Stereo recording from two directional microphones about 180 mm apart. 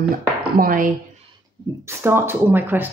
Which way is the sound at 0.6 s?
50° right (ahead or behind).